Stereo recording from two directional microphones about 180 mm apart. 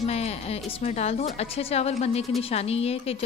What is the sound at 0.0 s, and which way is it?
A woman's voice, 35° left (ahead or behind).